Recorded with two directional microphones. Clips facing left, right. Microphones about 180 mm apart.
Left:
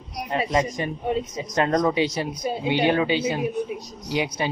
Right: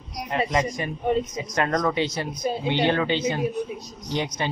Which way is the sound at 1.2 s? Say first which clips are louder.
Left 2 dB; 25° left (ahead or behind).